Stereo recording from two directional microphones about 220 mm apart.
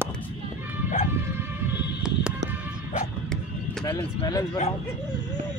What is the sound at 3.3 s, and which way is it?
Music, centre (ahead or behind).